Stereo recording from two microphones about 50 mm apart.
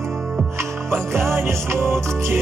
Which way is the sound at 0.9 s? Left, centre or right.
Right.